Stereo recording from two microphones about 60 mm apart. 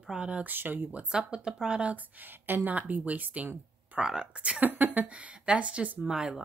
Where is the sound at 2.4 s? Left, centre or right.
Right.